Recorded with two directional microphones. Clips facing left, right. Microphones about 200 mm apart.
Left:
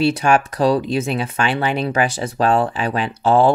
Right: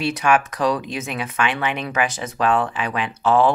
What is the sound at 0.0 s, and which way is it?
Speech, 30° left (ahead or behind).